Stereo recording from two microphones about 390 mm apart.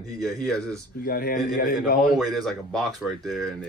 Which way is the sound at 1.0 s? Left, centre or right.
Left.